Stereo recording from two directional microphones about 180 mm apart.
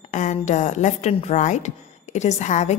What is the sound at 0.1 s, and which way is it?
A woman's voice, 40° left (ahead or behind).